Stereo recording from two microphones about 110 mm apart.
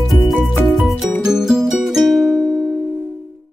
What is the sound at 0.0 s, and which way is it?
Music, centre (ahead or behind).